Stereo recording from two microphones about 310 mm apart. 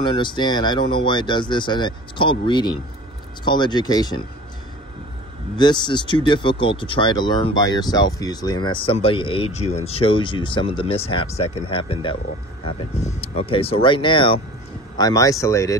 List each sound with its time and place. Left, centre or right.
0.0 s speech: centre
5.6 s speech: centre